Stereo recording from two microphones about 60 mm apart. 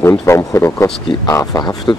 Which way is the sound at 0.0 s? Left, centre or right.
Left.